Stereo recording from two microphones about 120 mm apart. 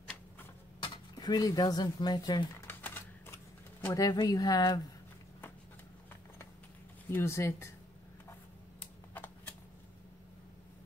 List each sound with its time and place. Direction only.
0.8 s speech: 35° left (ahead or behind)
2.6 s typewriter: 15° left (ahead or behind)
3.9 s speech: 35° left (ahead or behind)
7.1 s speech: 20° left (ahead or behind)
8.3 s a sound: 15° left (ahead or behind)